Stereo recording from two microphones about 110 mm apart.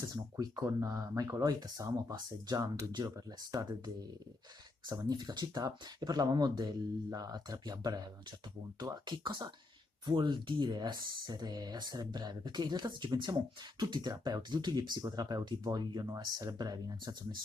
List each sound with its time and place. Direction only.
0.0 s speech: 35° right (ahead or behind)
4.8 s speech: 40° right (ahead or behind)